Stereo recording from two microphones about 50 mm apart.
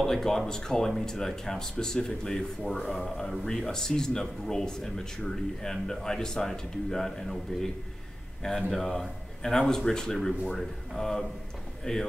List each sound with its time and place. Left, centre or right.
0.0 s speech: centre